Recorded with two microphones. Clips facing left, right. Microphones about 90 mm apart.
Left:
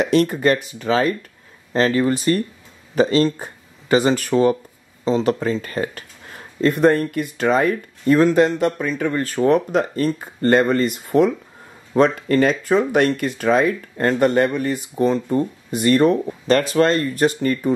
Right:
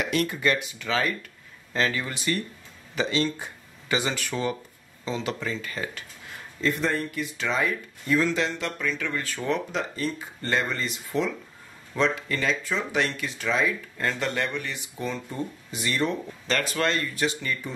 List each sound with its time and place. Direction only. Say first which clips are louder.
0.0 s speech: left 9 dB; 35° left (ahead or behind)